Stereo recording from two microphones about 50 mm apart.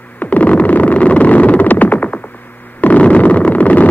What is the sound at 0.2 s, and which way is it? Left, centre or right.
Synthesizer, left.